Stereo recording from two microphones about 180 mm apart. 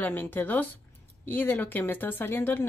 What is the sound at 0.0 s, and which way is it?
Speech, 10° left (ahead or behind).